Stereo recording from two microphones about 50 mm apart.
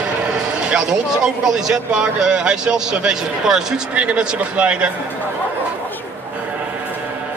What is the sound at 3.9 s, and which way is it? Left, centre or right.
A man's voice, right.